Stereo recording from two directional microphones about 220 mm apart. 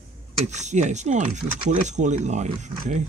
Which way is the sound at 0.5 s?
30° right (ahead or behind).